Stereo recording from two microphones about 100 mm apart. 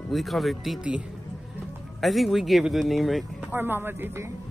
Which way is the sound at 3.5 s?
20° right (ahead or behind).